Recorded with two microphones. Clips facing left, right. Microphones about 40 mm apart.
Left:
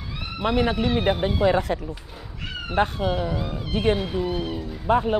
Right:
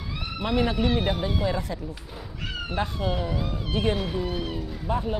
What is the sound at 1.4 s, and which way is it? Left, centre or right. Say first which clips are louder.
Speech: left 7 dB; left.